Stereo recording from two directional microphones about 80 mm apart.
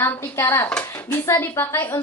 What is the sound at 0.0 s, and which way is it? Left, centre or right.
Speech, left.